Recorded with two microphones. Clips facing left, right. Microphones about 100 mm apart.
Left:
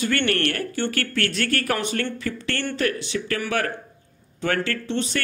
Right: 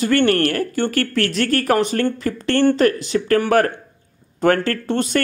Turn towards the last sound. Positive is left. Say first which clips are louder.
# right 6 dB
turn(degrees=-45)  # may be behind; listen again after turning